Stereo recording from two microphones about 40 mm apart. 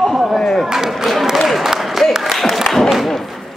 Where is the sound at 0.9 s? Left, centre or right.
Centre.